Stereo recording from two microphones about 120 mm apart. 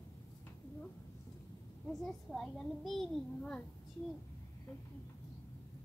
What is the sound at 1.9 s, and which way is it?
A child's voice, 5° left (ahead or behind).